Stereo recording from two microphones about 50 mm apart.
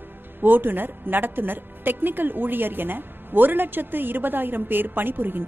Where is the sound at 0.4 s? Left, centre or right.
Right.